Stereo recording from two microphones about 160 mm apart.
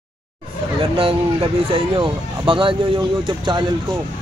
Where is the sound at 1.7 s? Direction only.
35° right (ahead or behind).